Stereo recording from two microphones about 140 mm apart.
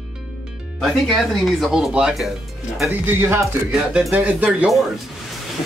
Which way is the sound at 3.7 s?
5° right (ahead or behind).